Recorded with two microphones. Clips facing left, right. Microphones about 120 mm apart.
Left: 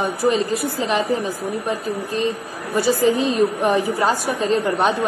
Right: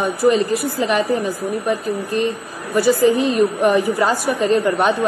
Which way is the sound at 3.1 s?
15° left (ahead or behind).